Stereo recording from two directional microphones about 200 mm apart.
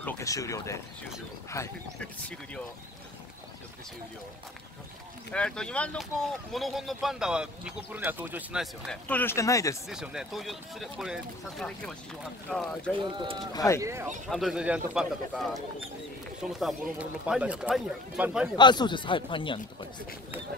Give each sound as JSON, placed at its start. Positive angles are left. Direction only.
{"t": 0.0, "sound": "speech", "side_deg": 15}
{"t": 5.3, "sound": "speech", "side_deg": 5}
{"t": 9.8, "sound": "speech", "side_deg": 0}
{"t": 13.0, "sound": "speech", "side_deg": -25}
{"t": 13.5, "sound": "speech", "side_deg": 20}
{"t": 13.7, "sound": "speech", "side_deg": -15}
{"t": 14.3, "sound": "speech", "side_deg": 0}
{"t": 16.5, "sound": "speech", "side_deg": 0}
{"t": 18.6, "sound": "speech", "side_deg": 20}